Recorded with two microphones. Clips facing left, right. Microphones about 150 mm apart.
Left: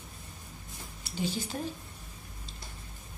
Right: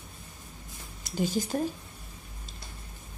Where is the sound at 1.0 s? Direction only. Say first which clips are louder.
Right 5 dB; 45° right (ahead or behind).